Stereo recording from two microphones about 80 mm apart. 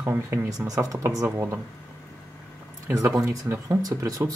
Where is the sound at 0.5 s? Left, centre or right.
Right.